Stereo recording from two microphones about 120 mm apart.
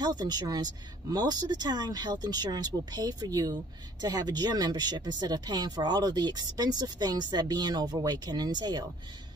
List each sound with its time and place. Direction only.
0.0 s speech: 35° right (ahead or behind)